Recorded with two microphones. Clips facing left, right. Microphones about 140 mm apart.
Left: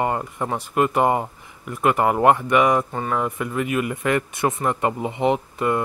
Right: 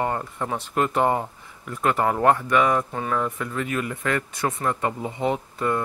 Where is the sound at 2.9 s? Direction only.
5° left (ahead or behind).